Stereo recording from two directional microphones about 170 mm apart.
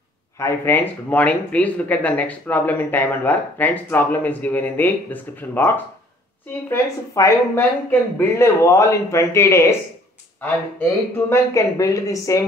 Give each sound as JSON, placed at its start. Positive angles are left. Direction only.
{"t": 0.4, "sound": "speech", "side_deg": 15}
{"t": 10.8, "sound": "speech", "side_deg": 15}